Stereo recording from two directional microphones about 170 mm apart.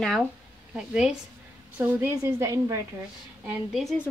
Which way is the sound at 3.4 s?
Centre (ahead or behind).